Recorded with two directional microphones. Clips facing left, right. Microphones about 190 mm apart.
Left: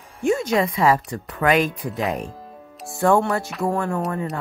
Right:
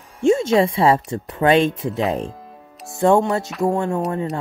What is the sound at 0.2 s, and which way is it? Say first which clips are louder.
Speech: right 4 dB; 25° right (ahead or behind).